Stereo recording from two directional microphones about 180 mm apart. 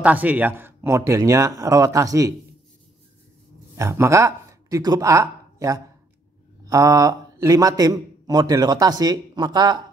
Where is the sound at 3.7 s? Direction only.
15° right (ahead or behind).